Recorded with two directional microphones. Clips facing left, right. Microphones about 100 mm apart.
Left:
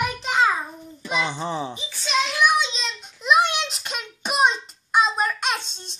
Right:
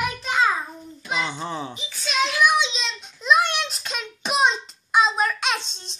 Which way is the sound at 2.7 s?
5° left (ahead or behind).